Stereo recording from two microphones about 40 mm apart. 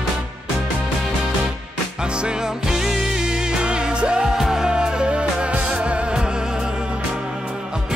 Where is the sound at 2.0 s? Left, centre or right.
Right.